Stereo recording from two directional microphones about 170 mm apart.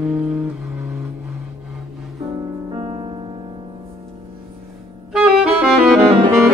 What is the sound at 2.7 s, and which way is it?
Music, 30° right (ahead or behind).